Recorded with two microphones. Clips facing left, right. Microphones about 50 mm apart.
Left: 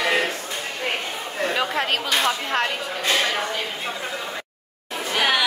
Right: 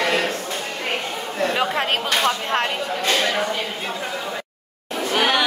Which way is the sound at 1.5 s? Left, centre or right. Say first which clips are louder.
Even; right.